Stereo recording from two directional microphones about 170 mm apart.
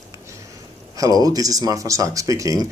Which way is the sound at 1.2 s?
20° right (ahead or behind).